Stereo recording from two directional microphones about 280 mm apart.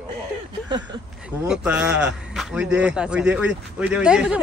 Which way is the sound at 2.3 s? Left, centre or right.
Centre.